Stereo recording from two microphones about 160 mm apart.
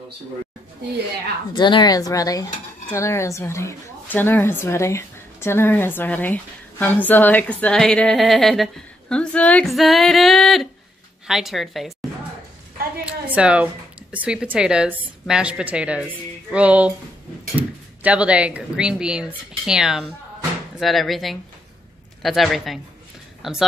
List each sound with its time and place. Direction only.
1.5 s speech: 30° left (ahead or behind); by 11.9 s centre (ahead or behind)
13.0 s a woman's voice: 5° right (ahead or behind)